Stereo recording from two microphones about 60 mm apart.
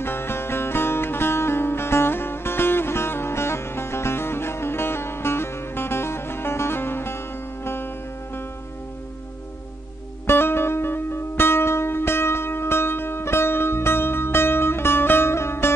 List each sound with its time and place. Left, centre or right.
0.0 s music: left
10.2 s music: left